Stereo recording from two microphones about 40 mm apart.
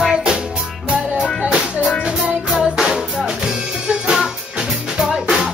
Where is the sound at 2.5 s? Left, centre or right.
Centre.